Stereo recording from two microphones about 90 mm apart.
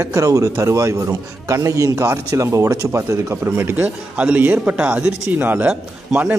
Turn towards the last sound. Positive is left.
turn(degrees=-15)  # may be behind; listen again after turning